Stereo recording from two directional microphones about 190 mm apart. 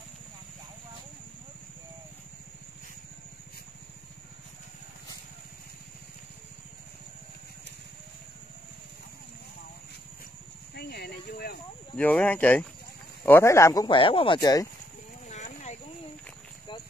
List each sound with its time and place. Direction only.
10.7 s speech: 60° left (ahead or behind)
12.0 s speech: 10° left (ahead or behind)
13.8 s speech: 25° left (ahead or behind)
15.2 s a sound: 35° left (ahead or behind)